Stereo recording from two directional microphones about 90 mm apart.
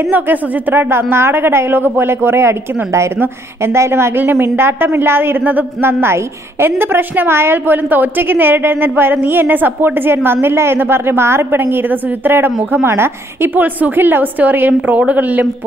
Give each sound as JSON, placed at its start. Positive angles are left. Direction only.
{"t": 0.1, "sound": "a woman's voice", "side_deg": -20}